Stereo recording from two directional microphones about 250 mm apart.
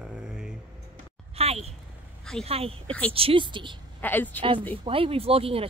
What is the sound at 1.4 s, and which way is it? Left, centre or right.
Speech, right.